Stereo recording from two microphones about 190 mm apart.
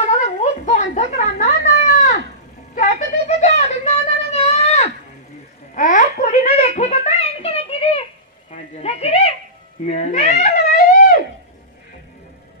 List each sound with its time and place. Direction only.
0.2 s a sound: 35° left (ahead or behind)
9.8 s cat: 35° left (ahead or behind)
10.7 s wind instrument: 45° left (ahead or behind)